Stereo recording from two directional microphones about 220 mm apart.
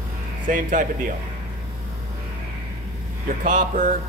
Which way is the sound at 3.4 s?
35° right (ahead or behind).